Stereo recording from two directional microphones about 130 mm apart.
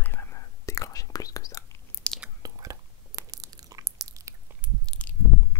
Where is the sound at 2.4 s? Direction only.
25° right (ahead or behind).